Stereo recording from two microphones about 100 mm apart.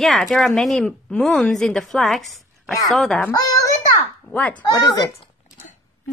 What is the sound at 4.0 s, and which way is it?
Speech, 15° left (ahead or behind).